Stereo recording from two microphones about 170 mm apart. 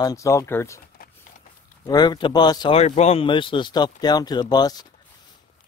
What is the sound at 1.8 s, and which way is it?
Speech, 25° left (ahead or behind).